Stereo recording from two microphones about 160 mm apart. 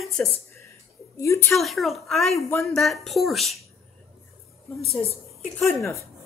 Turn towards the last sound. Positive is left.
turn(degrees=20)  # may be behind; listen again after turning